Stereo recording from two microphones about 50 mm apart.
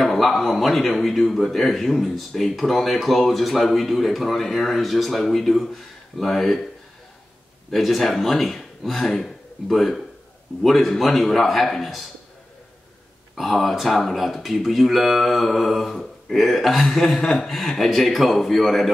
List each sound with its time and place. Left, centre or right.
0.0 s a man's voice: centre
7.7 s a man's voice: centre
13.4 s a man's voice: centre